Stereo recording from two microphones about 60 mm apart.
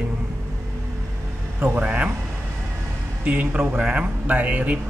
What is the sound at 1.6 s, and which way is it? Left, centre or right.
Speech, right.